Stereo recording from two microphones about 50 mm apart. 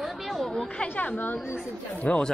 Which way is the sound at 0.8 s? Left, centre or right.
Left.